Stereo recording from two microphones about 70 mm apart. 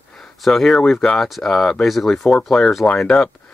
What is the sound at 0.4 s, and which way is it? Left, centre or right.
Speech, centre.